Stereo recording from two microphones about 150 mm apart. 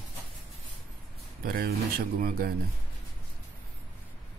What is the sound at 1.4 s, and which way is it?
Speech, 75° right (ahead or behind).